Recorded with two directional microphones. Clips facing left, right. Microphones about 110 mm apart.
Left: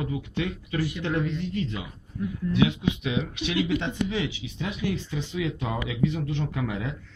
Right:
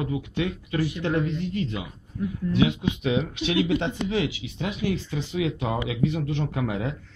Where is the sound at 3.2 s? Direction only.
40° right (ahead or behind).